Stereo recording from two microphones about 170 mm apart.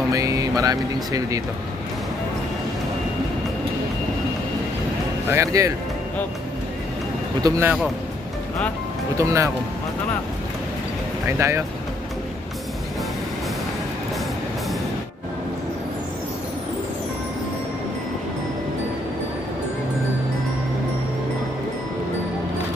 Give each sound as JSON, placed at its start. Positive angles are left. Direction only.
{"t": 0.1, "sound": "speech", "side_deg": -20}
{"t": 5.3, "sound": "speech", "side_deg": -20}
{"t": 7.4, "sound": "speech", "side_deg": -15}
{"t": 9.1, "sound": "speech", "side_deg": -15}
{"t": 11.2, "sound": "speech", "side_deg": -15}